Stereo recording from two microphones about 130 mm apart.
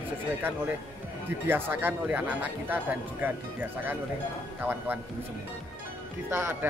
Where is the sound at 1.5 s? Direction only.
15° right (ahead or behind).